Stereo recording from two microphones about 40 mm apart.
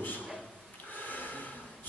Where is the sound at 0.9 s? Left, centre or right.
Left.